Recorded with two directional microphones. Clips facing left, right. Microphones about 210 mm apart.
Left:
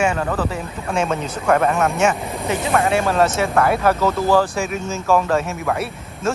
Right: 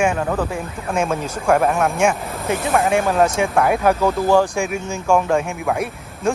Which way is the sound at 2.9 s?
10° right (ahead or behind).